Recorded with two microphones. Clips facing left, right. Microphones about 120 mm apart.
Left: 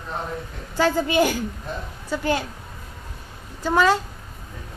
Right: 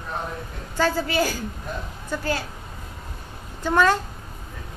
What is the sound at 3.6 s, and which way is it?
Speech, 10° left (ahead or behind).